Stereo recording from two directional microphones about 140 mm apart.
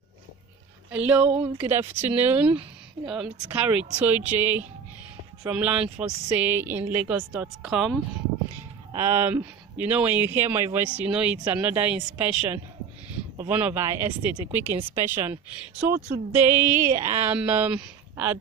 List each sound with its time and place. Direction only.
0.9 s speech: 10° right (ahead or behind)
8.9 s speech: 15° right (ahead or behind)